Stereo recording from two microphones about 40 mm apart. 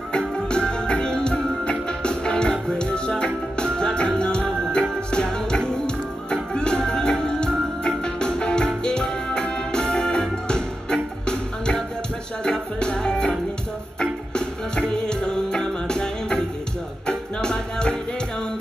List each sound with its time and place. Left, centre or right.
0.1 s music: left
14.9 s music: centre